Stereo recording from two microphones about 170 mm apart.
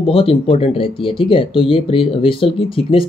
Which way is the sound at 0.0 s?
35° left (ahead or behind).